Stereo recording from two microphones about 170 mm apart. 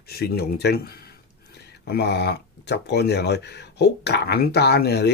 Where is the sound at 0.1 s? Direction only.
65° left (ahead or behind).